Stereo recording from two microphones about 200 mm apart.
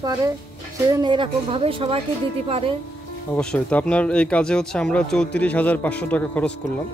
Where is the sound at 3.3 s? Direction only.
5° left (ahead or behind).